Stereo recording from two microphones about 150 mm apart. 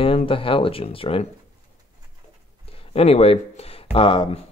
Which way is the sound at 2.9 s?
40° left (ahead or behind).